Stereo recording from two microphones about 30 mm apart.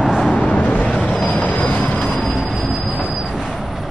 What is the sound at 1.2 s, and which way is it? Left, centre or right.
Train, left.